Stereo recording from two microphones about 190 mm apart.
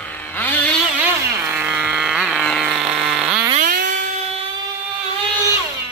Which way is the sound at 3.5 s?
45° right (ahead or behind).